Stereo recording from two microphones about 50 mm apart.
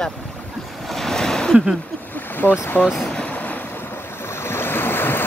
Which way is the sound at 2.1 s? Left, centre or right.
Left.